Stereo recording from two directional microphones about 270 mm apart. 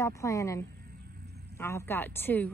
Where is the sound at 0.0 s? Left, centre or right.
Centre.